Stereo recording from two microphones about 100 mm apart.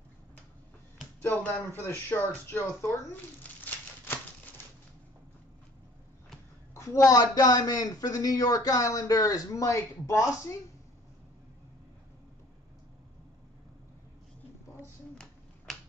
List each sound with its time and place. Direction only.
1.4 s speech: 20° left (ahead or behind)
3.6 s a sound: 20° left (ahead or behind)
6.7 s speech: 30° left (ahead or behind)